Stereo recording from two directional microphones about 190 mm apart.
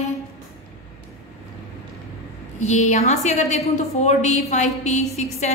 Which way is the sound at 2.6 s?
40° left (ahead or behind).